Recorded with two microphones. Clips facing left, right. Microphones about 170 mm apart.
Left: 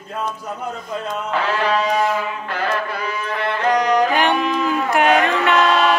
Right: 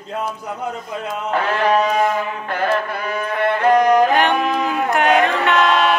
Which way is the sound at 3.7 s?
50° right (ahead or behind).